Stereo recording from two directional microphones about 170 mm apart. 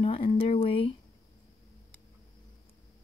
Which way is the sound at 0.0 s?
30° left (ahead or behind).